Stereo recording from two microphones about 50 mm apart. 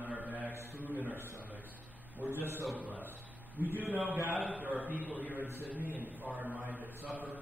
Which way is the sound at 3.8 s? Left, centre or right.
Right.